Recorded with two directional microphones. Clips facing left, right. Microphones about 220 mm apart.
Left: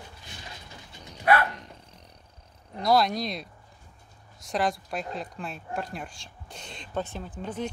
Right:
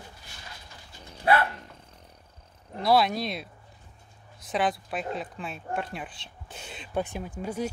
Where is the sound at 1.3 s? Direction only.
30° right (ahead or behind).